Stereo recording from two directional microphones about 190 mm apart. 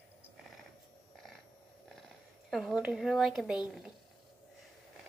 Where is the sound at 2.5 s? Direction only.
Centre (ahead or behind).